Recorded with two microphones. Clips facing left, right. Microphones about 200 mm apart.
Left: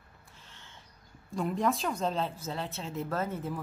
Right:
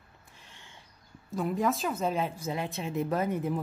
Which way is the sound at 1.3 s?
Centre (ahead or behind).